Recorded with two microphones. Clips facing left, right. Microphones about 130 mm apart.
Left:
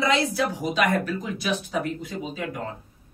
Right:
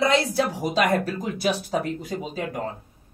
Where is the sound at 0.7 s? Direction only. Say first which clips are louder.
Right 3 dB; 35° right (ahead or behind).